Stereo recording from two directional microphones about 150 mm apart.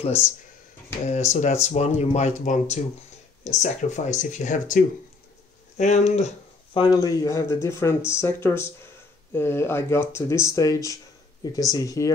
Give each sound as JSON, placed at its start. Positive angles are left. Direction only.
{"t": 1.0, "sound": "speech", "side_deg": 50}
{"t": 6.7, "sound": "speech", "side_deg": 30}